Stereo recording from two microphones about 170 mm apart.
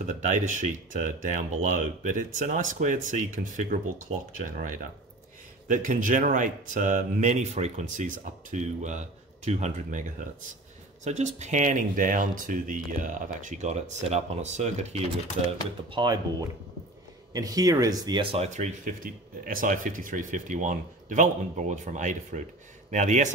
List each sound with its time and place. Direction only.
0.0 s speech: 45° right (ahead or behind)
15.9 s speech: 25° right (ahead or behind); by 23.3 s 45° right (ahead or behind)